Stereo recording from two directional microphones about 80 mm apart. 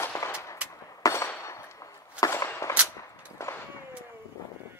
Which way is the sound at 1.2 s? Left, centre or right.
Left.